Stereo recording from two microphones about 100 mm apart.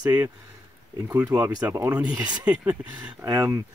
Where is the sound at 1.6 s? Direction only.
30° right (ahead or behind).